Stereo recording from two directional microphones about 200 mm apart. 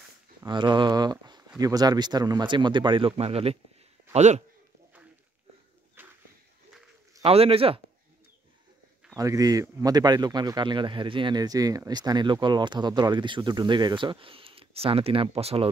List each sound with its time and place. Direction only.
0.5 s speech: 20° right (ahead or behind)
6.0 s walk: 10° right (ahead or behind)
7.2 s speech: 30° right (ahead or behind)
9.1 s speech: 15° right (ahead or behind)